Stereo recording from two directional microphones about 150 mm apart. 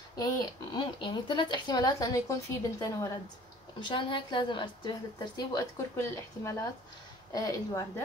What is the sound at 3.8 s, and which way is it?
A woman's voice, 30° left (ahead or behind).